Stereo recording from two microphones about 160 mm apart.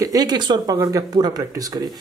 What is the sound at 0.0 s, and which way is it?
Speech, 25° right (ahead or behind).